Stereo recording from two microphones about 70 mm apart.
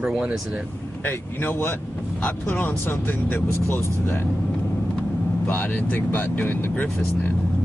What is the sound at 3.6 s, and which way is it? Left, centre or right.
Speech, left.